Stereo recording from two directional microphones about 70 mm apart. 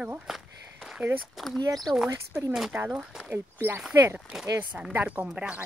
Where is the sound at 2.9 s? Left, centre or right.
Centre.